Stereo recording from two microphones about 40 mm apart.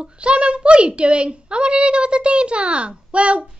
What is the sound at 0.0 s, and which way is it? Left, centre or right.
A woman's voice, right.